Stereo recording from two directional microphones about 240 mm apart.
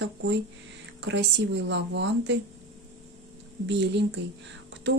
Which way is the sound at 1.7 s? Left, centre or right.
Right.